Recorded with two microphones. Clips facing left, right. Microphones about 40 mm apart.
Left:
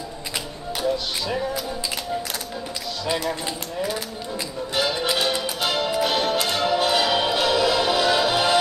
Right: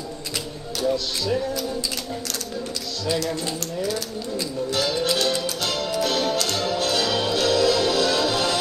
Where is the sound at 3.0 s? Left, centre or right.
Left.